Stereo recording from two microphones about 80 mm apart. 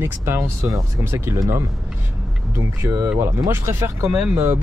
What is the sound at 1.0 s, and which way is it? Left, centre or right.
Speech, right.